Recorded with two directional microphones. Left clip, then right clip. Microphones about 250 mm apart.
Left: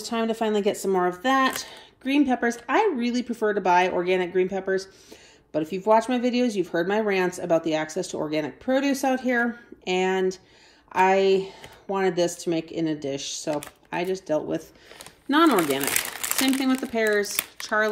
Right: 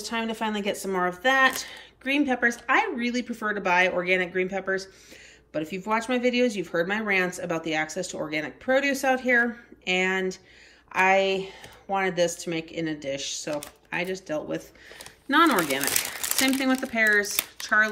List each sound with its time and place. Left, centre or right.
0.0 s speech: centre